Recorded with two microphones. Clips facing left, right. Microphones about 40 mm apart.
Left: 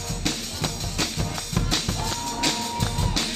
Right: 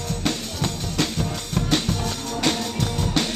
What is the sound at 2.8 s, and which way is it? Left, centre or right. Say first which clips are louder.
Music: right 2 dB; centre.